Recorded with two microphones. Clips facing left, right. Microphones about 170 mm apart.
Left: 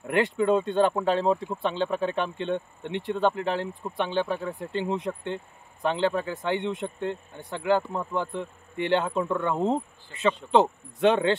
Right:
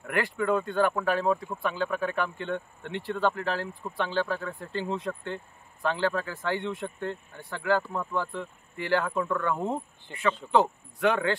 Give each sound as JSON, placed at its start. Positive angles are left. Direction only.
{"t": 0.0, "sound": "speech", "side_deg": 20}